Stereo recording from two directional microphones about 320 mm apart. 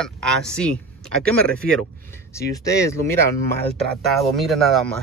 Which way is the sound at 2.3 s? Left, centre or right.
Centre.